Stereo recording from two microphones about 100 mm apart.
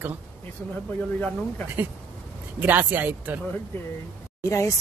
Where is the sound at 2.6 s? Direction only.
20° right (ahead or behind).